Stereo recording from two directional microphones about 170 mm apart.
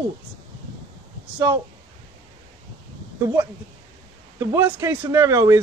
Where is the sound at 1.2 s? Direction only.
10° right (ahead or behind).